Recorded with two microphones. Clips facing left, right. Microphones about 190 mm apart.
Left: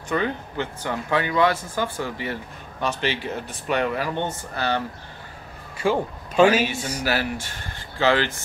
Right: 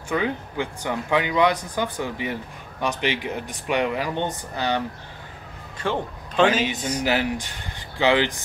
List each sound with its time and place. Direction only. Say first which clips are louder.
0.1 s speech: even; 10° right (ahead or behind)
5.8 s a man's voice: left 4 dB; 10° left (ahead or behind)
7.1 s speech: right 1 dB; 15° right (ahead or behind)